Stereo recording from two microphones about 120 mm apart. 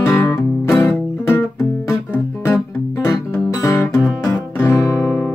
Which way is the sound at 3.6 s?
25° left (ahead or behind).